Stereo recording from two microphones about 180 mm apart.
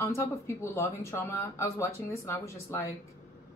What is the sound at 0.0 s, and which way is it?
Speech, 15° left (ahead or behind).